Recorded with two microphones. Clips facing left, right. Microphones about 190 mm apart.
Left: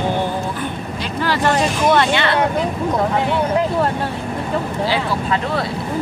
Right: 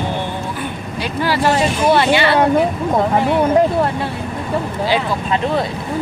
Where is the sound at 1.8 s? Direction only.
5° right (ahead or behind).